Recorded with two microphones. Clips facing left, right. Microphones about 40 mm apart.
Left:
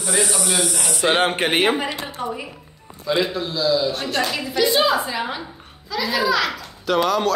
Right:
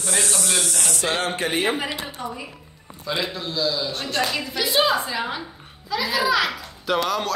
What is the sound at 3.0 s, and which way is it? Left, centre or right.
A woman's voice, centre.